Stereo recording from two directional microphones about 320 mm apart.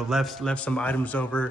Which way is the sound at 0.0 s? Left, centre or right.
Centre.